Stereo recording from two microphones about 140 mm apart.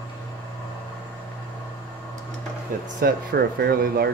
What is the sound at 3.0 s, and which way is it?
Speech, 90° right.